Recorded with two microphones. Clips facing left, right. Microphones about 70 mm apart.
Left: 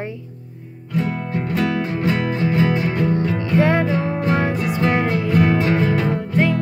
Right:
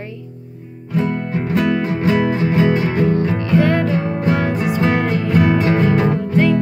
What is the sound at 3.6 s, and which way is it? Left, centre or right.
Music, centre.